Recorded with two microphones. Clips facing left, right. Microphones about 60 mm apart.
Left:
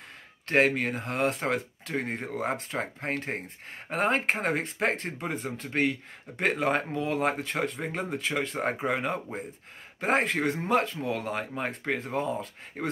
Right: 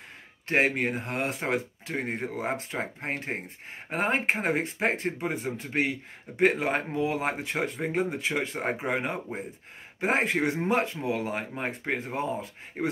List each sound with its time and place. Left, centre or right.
0.5 s speech: centre
10.6 s speech: right
11.1 s speech: centre